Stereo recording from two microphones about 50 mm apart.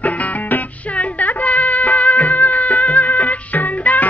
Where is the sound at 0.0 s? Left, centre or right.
Left.